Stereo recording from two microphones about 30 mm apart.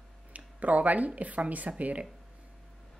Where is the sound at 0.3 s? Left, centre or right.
Right.